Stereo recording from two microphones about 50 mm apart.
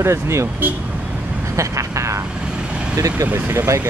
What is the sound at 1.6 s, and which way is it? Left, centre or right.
Vehicle, right.